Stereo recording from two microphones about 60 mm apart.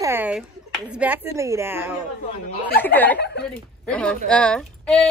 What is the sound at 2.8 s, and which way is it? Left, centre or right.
Speech, left.